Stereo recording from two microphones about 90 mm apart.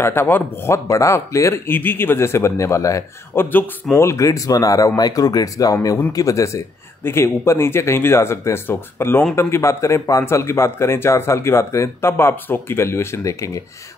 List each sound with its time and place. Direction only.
0.0 s a man's voice: 25° left (ahead or behind)